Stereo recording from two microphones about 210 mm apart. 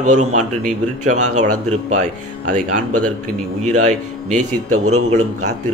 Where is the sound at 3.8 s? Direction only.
35° right (ahead or behind).